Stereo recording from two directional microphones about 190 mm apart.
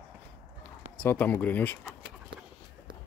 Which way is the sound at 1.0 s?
10° left (ahead or behind).